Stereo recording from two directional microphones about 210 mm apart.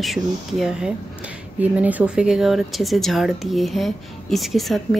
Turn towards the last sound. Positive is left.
turn(degrees=0)  # may be behind; listen again after turning